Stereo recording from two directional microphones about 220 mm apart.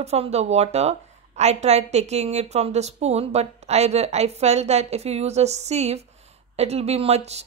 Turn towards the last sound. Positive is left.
turn(degrees=-30)  # may be behind; listen again after turning